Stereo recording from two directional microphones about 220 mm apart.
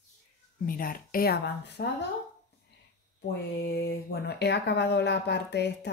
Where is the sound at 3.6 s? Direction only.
45° left (ahead or behind).